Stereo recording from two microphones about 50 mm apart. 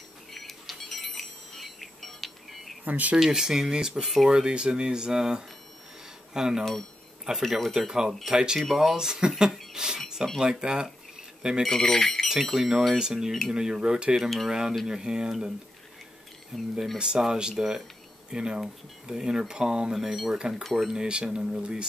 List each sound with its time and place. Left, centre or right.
0.3 s a sound: centre
2.8 s speech: right
3.2 s speech: centre
4.3 s speech: centre
7.4 s speech: centre
7.8 s speech: centre
9.4 s a sound: centre
10.4 s speech: centre
11.6 s speech: centre
16.5 s speech: centre
17.0 s speech: centre
20.6 s speech: centre
20.9 s speech: centre